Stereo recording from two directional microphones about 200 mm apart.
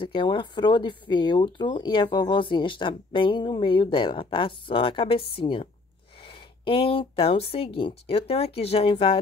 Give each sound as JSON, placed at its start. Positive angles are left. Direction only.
{"t": 0.0, "sound": "speech", "side_deg": 25}